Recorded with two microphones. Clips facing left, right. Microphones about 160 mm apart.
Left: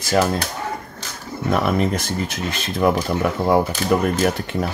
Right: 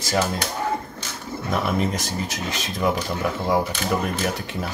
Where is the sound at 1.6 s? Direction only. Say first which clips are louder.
Left 4 dB; 55° left (ahead or behind).